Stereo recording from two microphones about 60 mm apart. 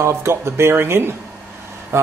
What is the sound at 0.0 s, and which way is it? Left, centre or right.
A man's voice, right.